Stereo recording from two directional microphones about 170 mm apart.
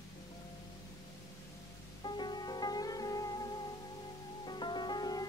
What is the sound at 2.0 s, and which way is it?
Music, 25° left (ahead or behind).